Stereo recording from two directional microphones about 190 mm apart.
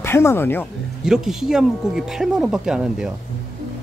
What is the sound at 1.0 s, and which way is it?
Speech, 5° right (ahead or behind).